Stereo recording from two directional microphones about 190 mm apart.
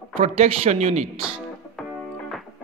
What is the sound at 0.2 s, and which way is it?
Speech, 35° right (ahead or behind).